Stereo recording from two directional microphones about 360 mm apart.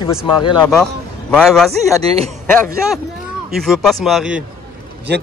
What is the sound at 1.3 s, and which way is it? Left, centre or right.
Speech, centre.